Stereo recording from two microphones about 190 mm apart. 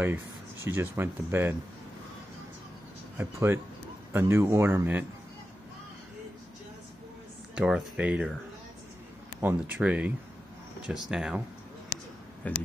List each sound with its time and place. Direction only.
0.7 s speech: 10° right (ahead or behind)
3.2 s speech: 10° right (ahead or behind)
7.5 s speech: 5° right (ahead or behind)
9.4 s speech: 10° right (ahead or behind)
12.4 s speech: 10° left (ahead or behind)